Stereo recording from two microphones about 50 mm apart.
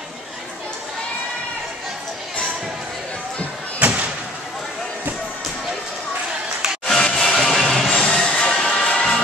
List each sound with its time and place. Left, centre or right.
3.8 s slam: right
6.9 s a sound: centre
7.6 s music: centre
7.9 s music: centre